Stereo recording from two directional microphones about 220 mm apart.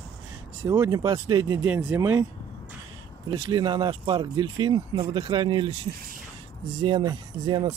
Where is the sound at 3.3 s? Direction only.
20° right (ahead or behind).